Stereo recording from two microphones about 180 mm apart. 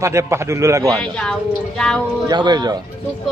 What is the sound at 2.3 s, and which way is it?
Speech, 25° right (ahead or behind).